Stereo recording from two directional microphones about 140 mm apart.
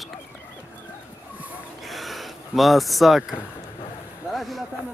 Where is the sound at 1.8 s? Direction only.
Centre (ahead or behind).